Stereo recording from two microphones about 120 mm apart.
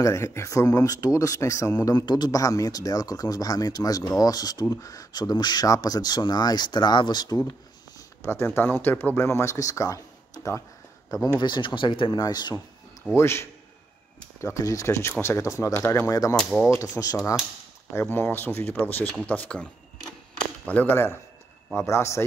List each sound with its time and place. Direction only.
0.0 s speech: 25° left (ahead or behind)
1.9 s speech: 35° left (ahead or behind)
8.2 s speech: 20° left (ahead or behind)
11.3 s speech: 40° left (ahead or behind)
13.1 s speech: 20° left (ahead or behind)
16.3 s speech: 5° left (ahead or behind)
16.6 s speech: 25° left (ahead or behind)
17.9 s speech: 20° left (ahead or behind)